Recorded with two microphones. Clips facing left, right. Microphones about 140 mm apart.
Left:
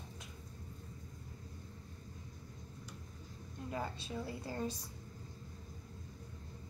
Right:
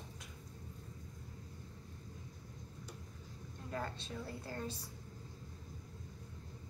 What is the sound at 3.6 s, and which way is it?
A woman's voice, 10° left (ahead or behind).